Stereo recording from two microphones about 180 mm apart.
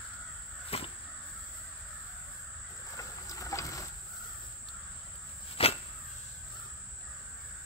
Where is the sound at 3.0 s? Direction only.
20° left (ahead or behind).